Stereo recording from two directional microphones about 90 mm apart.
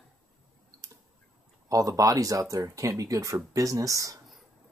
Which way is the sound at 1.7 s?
40° right (ahead or behind).